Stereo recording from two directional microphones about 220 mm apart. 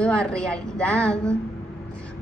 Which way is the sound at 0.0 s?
5° left (ahead or behind).